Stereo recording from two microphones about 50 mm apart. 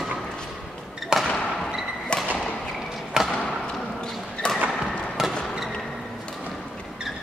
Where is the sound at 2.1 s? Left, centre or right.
Left.